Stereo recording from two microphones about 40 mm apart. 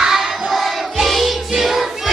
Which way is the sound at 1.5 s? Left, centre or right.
Centre.